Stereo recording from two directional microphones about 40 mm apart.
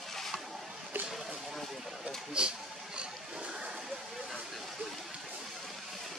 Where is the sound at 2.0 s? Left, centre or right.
Right.